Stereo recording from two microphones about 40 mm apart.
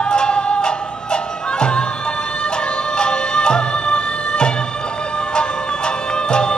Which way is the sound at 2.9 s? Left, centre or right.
Left.